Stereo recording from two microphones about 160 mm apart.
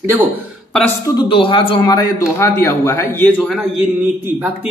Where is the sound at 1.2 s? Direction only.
30° left (ahead or behind); by 3.4 s 10° left (ahead or behind).